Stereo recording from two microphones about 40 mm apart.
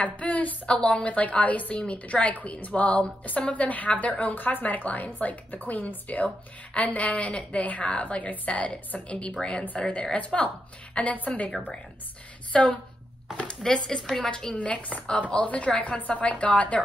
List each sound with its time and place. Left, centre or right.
0.2 s a woman's voice: left
12.5 s speech: centre
14.2 s a woman's voice: left